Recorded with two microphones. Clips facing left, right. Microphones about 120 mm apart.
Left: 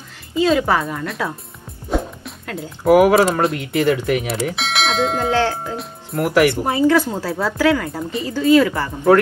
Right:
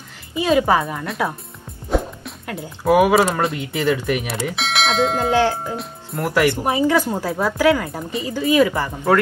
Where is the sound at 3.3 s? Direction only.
Centre (ahead or behind).